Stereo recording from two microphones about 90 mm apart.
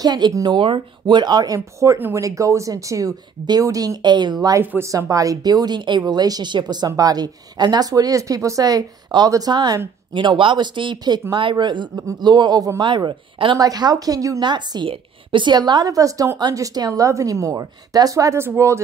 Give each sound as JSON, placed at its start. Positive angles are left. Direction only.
{"t": 0.0, "sound": "speech", "side_deg": -55}
{"t": 0.5, "sound": "speech", "side_deg": -70}
{"t": 4.8, "sound": "speech", "side_deg": -35}
{"t": 6.9, "sound": "speech", "side_deg": -45}
{"t": 10.1, "sound": "speech", "side_deg": -65}
{"t": 12.8, "sound": "speech", "side_deg": -65}
{"t": 13.6, "sound": "speech", "side_deg": -45}
{"t": 14.4, "sound": "speech", "side_deg": -55}